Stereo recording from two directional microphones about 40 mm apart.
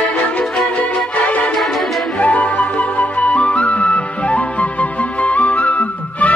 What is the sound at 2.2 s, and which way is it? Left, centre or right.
Music, left.